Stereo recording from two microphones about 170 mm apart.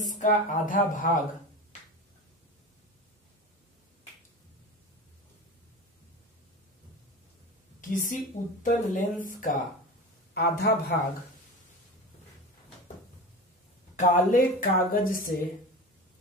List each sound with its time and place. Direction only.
0.2 s speech: 50° left (ahead or behind)
7.9 s speech: 50° left (ahead or behind)
10.3 s a man's voice: 70° left (ahead or behind)
13.9 s speech: 50° left (ahead or behind)